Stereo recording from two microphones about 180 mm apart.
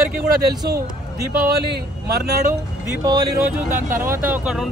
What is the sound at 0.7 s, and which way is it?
Speech, 60° right (ahead or behind).